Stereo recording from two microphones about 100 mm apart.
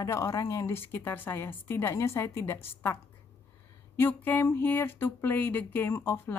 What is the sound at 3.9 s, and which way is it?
Speech, 20° left (ahead or behind).